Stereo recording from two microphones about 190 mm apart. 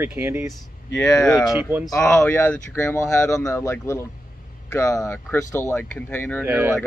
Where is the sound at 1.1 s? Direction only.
20° left (ahead or behind).